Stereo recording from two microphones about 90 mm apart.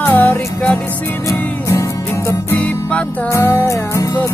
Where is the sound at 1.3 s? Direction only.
35° left (ahead or behind).